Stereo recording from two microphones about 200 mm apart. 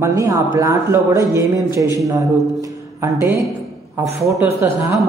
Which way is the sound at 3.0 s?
15° right (ahead or behind).